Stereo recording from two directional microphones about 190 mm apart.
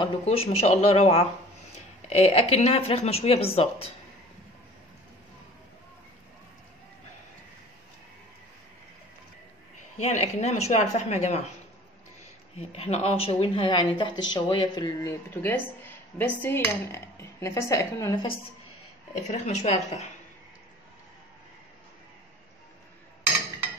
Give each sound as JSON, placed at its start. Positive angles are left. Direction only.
{"t": 0.0, "sound": "speech", "side_deg": 30}
{"t": 9.9, "sound": "speech", "side_deg": 35}
{"t": 12.5, "sound": "speech", "side_deg": 35}
{"t": 19.1, "sound": "speech", "side_deg": 35}